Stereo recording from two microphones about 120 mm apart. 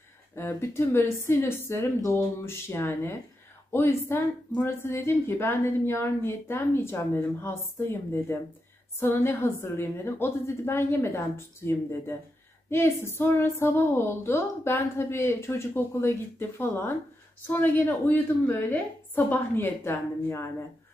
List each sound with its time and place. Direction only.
0.4 s a woman's voice: 20° left (ahead or behind)